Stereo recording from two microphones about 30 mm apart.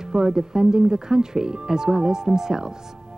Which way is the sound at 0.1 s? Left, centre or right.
Centre.